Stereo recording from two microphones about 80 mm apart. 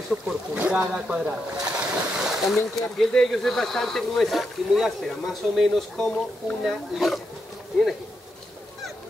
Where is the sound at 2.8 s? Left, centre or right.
Centre.